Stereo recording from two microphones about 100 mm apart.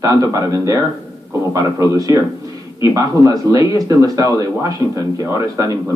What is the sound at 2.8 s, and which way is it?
Speech, 30° right (ahead or behind).